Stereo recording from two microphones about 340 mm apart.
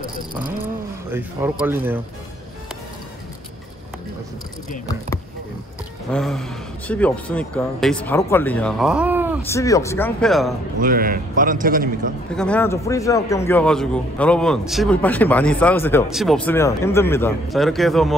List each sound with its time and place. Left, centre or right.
1.1 s speech: centre
6.1 s a man's voice: centre
9.5 s speech: centre
10.8 s a man's voice: right
12.4 s a man's voice: centre